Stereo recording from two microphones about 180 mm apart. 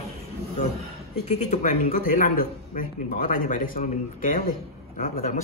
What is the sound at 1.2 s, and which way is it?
A man's voice, 40° left (ahead or behind).